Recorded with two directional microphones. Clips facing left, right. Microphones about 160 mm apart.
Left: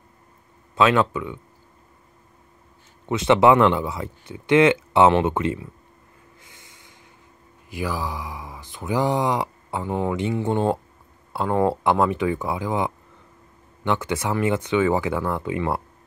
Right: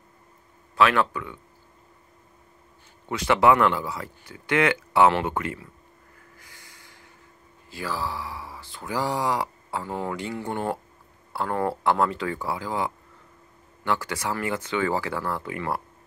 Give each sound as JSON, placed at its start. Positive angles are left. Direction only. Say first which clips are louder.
{"t": 0.7, "sound": "speech", "louder": "left 3 dB", "side_deg": 20}
{"t": 3.1, "sound": "speech", "louder": "left 4 dB", "side_deg": 20}
{"t": 6.4, "sound": "train", "louder": "left 1 dB", "side_deg": 20}
{"t": 7.7, "sound": "speech", "louder": "left 3 dB", "side_deg": 15}